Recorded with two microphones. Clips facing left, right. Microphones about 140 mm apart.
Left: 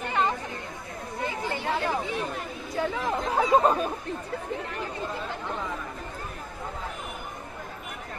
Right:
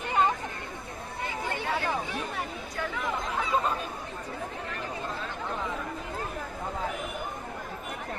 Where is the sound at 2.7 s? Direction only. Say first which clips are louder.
Left 5 dB; 35° left (ahead or behind).